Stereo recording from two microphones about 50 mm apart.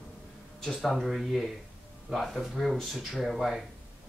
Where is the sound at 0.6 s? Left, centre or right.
Centre.